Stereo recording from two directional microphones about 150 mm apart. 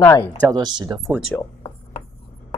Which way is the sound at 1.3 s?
10° left (ahead or behind).